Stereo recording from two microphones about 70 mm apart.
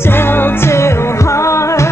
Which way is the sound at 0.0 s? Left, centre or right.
Left.